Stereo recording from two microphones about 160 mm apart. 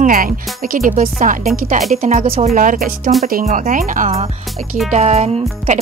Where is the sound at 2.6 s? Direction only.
60° right (ahead or behind); by 5.8 s 40° right (ahead or behind).